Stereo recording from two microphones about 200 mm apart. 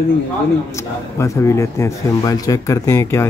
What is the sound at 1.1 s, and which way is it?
A man's voice, 15° left (ahead or behind).